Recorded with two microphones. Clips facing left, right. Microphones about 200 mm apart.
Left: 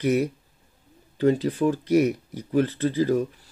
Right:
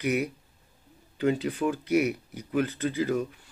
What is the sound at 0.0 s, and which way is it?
Speech, 35° left (ahead or behind).